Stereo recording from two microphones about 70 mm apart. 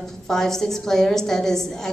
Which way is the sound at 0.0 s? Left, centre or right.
Centre.